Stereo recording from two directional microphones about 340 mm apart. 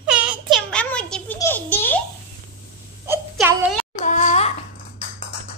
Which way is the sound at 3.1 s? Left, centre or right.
Centre.